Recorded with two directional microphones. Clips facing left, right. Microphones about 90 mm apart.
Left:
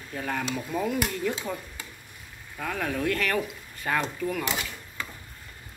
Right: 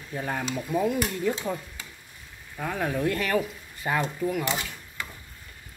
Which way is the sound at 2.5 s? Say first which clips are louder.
Right 2 dB; 20° right (ahead or behind).